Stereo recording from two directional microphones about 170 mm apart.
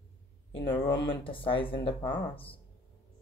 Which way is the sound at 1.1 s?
30° left (ahead or behind).